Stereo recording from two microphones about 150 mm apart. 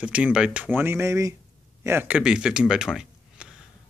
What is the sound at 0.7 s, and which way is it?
Speech, 15° right (ahead or behind).